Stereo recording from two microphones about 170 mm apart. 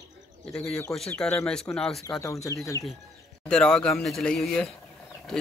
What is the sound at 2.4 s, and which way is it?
Speech, 20° left (ahead or behind).